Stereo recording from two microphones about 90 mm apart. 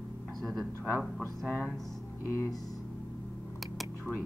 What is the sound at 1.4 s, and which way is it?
Speech, 15° right (ahead or behind).